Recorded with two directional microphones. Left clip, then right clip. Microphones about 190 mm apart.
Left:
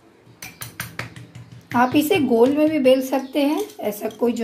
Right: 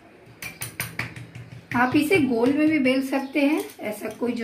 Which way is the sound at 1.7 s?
55° left (ahead or behind).